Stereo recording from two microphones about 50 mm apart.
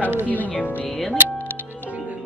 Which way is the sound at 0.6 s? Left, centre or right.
Left.